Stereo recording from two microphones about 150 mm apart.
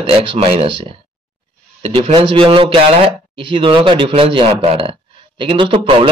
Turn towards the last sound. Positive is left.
turn(degrees=-35)  # may be behind; listen again after turning